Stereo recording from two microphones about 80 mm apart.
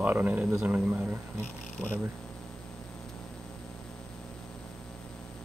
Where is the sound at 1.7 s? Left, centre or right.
Centre.